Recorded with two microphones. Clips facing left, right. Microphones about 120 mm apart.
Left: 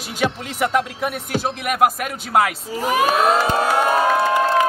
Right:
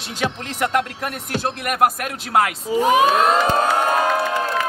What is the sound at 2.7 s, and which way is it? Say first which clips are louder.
Speech: right 4 dB; 20° right (ahead or behind).